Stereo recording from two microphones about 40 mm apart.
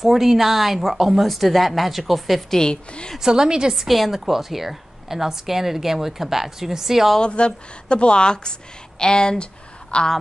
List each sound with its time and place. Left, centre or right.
0.0 s a woman's voice: centre
2.5 s speech: left
3.2 s a woman's voice: centre
3.7 s a woman's voice: centre
7.2 s speech: left